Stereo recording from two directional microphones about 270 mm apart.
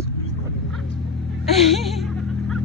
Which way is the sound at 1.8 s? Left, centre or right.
Centre.